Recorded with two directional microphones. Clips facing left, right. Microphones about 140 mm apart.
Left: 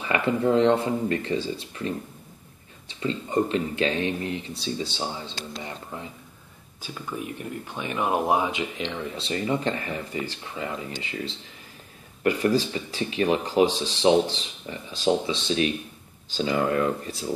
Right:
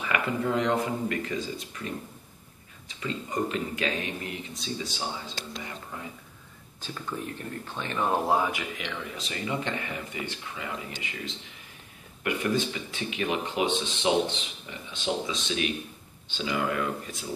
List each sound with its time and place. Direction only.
0.0 s speech: 30° left (ahead or behind)
2.9 s speech: 30° left (ahead or behind)
6.8 s speech: 10° left (ahead or behind); by 17.3 s 35° left (ahead or behind)